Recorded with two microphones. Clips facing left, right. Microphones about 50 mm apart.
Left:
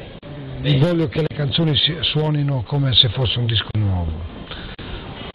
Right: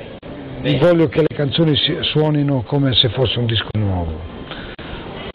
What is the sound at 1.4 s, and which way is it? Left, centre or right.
Speech, centre.